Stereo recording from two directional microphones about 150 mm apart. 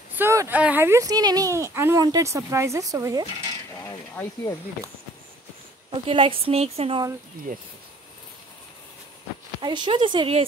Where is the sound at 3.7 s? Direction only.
15° left (ahead or behind).